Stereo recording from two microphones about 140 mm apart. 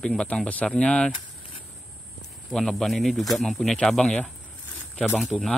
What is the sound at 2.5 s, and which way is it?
Speech, 5° left (ahead or behind).